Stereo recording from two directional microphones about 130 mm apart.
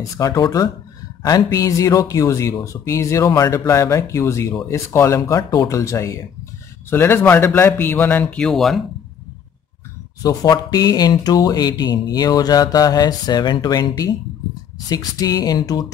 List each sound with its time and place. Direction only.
0.2 s speech: 30° left (ahead or behind); by 8.8 s centre (ahead or behind)
10.2 s speech: 30° left (ahead or behind)